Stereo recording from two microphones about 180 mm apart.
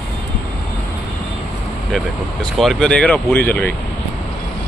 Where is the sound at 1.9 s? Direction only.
Centre (ahead or behind).